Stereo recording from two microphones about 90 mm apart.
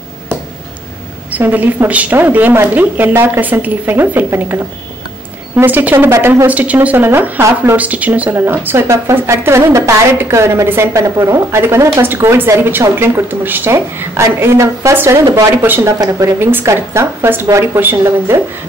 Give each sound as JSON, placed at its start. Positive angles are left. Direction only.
{"t": 1.3, "sound": "speech", "side_deg": -20}
{"t": 5.7, "sound": "speech", "side_deg": -20}
{"t": 6.4, "sound": "speech", "side_deg": -15}
{"t": 15.6, "sound": "speech", "side_deg": -20}
{"t": 16.0, "sound": "speech", "side_deg": -40}
{"t": 16.3, "sound": "speech", "side_deg": -25}